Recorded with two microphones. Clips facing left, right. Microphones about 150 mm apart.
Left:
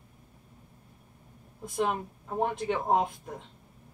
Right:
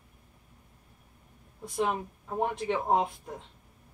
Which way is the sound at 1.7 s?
Centre (ahead or behind).